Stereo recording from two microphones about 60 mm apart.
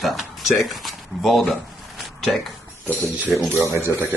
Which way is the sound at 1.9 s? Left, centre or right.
Centre.